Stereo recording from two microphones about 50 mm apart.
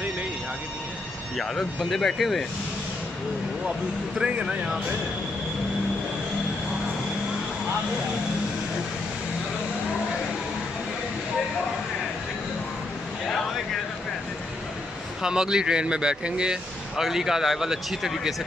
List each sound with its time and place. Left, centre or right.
1.4 s speech: centre
2.1 s speech: centre
4.2 s speech: centre
15.2 s speech: centre
16.9 s speech: centre